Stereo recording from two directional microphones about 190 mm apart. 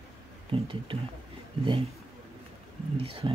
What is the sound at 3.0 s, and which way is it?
Speech, 30° right (ahead or behind).